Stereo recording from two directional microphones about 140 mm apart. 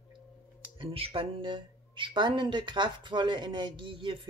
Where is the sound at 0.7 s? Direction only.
40° right (ahead or behind).